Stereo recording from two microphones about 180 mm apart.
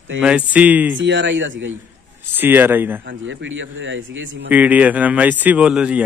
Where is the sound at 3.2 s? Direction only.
90° right.